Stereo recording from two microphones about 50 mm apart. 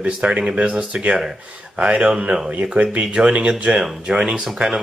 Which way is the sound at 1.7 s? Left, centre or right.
Right.